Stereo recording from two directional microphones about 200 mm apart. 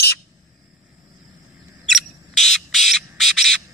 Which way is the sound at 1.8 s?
Centre (ahead or behind).